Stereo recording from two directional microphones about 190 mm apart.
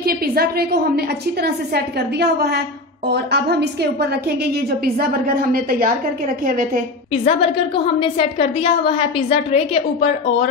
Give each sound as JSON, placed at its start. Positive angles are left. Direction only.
{"t": 0.0, "sound": "a woman's voice", "side_deg": -55}
{"t": 7.2, "sound": "a woman's voice", "side_deg": 30}